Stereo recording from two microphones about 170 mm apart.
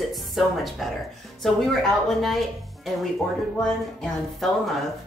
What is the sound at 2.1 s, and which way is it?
Speech, centre (ahead or behind).